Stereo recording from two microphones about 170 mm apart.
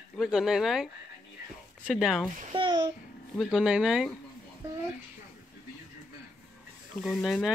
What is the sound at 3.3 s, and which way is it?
Speech, 5° right (ahead or behind).